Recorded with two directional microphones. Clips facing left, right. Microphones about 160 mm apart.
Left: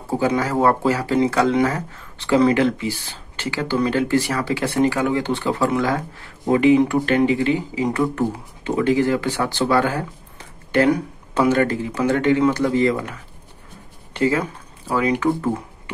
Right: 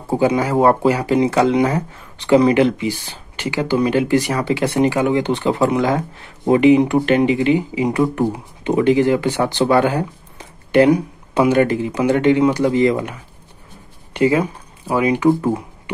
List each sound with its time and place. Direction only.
0.1 s speech: 15° right (ahead or behind)